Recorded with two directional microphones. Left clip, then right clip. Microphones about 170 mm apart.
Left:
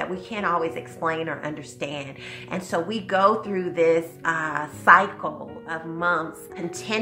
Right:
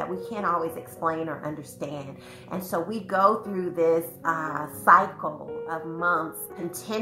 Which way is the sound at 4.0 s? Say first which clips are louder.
Left 2 dB; 30° left (ahead or behind).